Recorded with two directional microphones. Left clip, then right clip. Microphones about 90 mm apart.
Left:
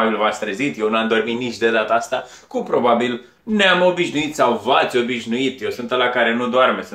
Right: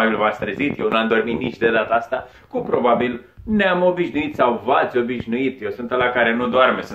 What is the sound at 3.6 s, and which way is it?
Speech, 15° left (ahead or behind).